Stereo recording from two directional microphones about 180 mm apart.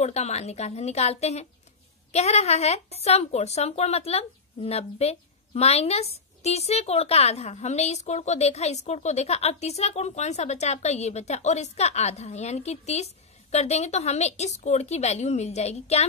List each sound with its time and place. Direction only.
0.0 s speech: 40° left (ahead or behind)